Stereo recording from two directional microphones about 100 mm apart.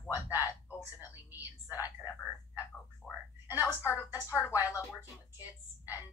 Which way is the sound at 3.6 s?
25° left (ahead or behind).